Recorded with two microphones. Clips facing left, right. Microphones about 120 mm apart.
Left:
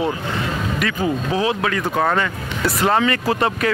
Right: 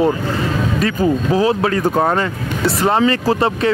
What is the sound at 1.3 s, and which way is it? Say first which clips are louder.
Speech: right 5 dB; 35° right (ahead or behind).